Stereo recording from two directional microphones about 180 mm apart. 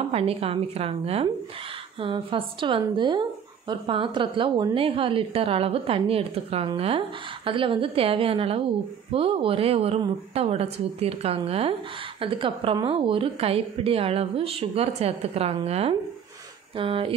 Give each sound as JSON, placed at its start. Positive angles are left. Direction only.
{"t": 0.1, "sound": "a woman's voice", "side_deg": -35}